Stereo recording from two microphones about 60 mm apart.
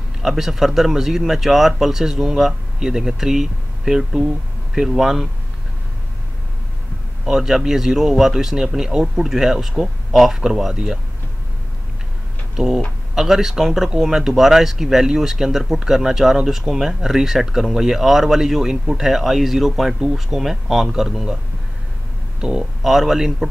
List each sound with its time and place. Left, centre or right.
0.2 s speech: centre
7.2 s speech: centre
12.5 s speech: centre
22.4 s speech: centre